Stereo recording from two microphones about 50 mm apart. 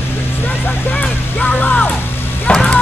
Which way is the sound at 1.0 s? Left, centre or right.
Centre.